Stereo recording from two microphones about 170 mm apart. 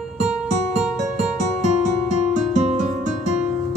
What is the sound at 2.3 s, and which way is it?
Music, 40° right (ahead or behind).